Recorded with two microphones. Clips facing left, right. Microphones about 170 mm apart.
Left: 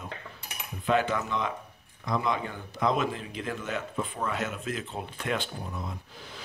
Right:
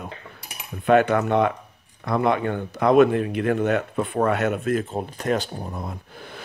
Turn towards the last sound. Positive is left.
turn(degrees=-55)  # may be behind; listen again after turning